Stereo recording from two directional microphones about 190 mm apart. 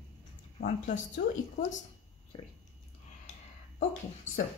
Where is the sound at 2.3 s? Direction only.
25° left (ahead or behind).